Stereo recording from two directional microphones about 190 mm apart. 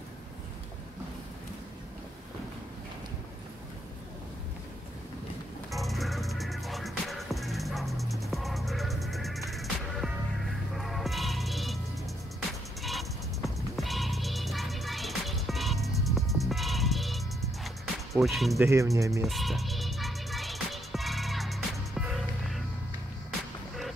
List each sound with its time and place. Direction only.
5.7 s music: centre (ahead or behind)
12.8 s music: centre (ahead or behind)
18.1 s speech: centre (ahead or behind)
18.6 s speech: 15° right (ahead or behind)
19.2 s music: centre (ahead or behind)